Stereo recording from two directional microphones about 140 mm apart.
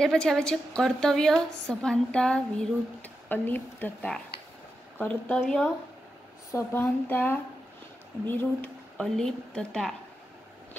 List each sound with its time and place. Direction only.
0.0 s a woman's voice: 5° left (ahead or behind)
6.5 s a woman's voice: 15° left (ahead or behind)